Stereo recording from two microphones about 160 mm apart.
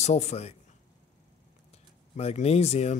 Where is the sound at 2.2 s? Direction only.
40° left (ahead or behind).